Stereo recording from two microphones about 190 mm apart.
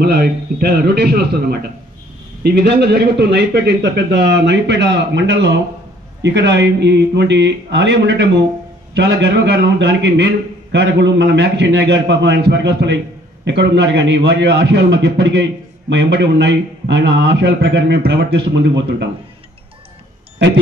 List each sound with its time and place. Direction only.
0.0 s a man's voice: 55° right (ahead or behind)